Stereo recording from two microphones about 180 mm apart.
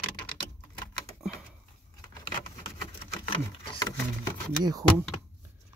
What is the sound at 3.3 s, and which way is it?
Sewing machine, 25° left (ahead or behind).